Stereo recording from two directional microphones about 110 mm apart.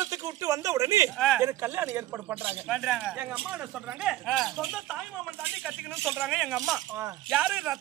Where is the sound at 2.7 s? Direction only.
Centre (ahead or behind).